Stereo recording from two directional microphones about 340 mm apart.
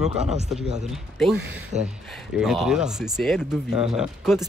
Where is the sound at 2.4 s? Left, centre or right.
Centre.